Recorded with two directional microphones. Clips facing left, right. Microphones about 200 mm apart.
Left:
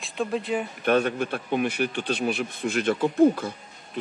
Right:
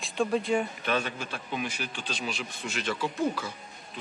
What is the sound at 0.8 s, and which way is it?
Speech, 55° left (ahead or behind).